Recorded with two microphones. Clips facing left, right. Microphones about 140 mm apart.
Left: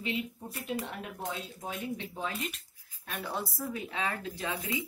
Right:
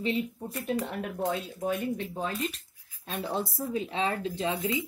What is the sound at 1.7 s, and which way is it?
Speech, 50° right (ahead or behind).